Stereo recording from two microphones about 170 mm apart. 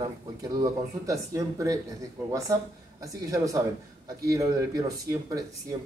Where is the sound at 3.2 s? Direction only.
20° right (ahead or behind).